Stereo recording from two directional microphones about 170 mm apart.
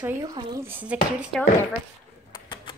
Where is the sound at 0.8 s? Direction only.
10° right (ahead or behind).